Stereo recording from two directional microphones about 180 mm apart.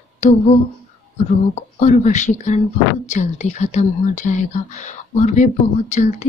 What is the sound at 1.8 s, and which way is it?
Speech, 40° left (ahead or behind).